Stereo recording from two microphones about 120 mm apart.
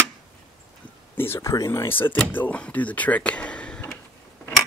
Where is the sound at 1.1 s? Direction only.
20° left (ahead or behind).